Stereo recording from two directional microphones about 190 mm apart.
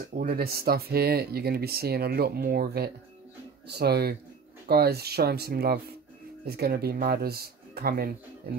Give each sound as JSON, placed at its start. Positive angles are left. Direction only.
{"t": 0.0, "sound": "speech", "side_deg": -50}